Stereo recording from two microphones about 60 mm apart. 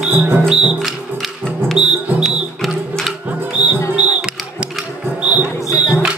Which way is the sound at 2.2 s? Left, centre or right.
Centre.